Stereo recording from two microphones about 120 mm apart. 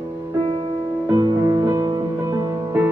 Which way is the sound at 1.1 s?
30° right (ahead or behind).